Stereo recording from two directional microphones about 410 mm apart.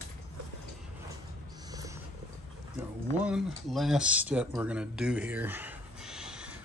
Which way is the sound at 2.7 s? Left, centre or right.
Centre.